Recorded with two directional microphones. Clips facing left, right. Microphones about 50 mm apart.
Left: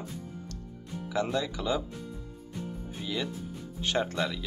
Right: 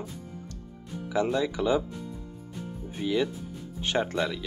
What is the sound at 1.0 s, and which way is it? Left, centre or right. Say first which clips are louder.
Speech: right 4 dB; centre.